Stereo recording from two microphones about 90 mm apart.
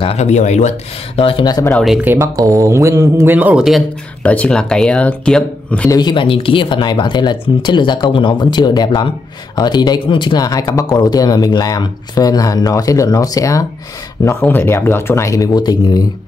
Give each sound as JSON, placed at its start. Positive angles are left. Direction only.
{"t": 1.1, "sound": "speech", "side_deg": 90}
{"t": 2.0, "sound": "speech", "side_deg": -20}
{"t": 2.3, "sound": "speech", "side_deg": -40}
{"t": 3.5, "sound": "speech", "side_deg": 0}
{"t": 4.2, "sound": "speech", "side_deg": 15}
{"t": 5.9, "sound": "speech", "side_deg": 60}
{"t": 10.4, "sound": "speech", "side_deg": 45}
{"t": 14.5, "sound": "speech", "side_deg": 25}